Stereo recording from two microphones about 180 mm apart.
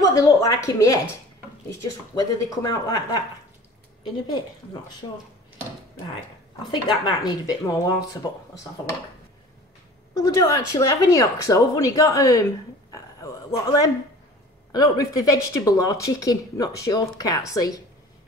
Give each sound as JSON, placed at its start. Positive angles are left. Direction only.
{"t": 0.1, "sound": "speech", "side_deg": 20}
{"t": 4.0, "sound": "speech", "side_deg": 25}
{"t": 6.7, "sound": "speech", "side_deg": 20}
{"t": 10.1, "sound": "speech", "side_deg": 20}
{"t": 12.9, "sound": "a sound", "side_deg": 20}
{"t": 14.7, "sound": "speech", "side_deg": 20}